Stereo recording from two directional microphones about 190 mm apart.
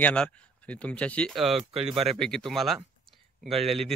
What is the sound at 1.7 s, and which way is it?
Speech, 30° right (ahead or behind).